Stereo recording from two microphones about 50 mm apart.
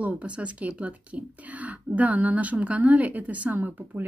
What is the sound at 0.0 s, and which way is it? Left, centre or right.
Speech, right.